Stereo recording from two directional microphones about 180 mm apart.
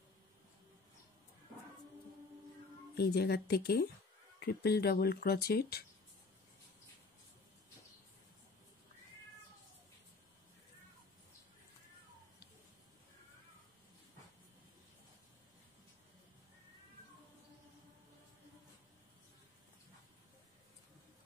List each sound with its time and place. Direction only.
2.9 s speech: 65° left (ahead or behind)